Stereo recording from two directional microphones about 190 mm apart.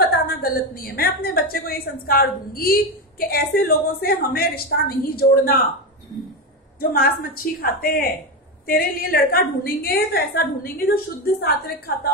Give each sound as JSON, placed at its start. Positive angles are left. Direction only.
{"t": 0.3, "sound": "a woman's voice", "side_deg": 50}
{"t": 6.8, "sound": "a woman's voice", "side_deg": 50}